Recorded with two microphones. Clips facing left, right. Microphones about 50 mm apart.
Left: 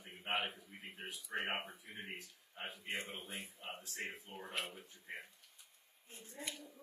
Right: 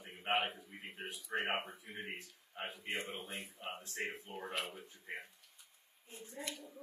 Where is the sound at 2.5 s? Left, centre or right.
Right.